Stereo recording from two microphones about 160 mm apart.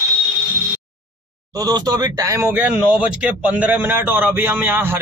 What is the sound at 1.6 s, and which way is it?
Speech, 25° right (ahead or behind).